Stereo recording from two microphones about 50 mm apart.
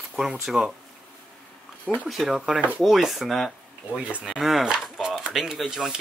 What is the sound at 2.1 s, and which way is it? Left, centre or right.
Speech, centre.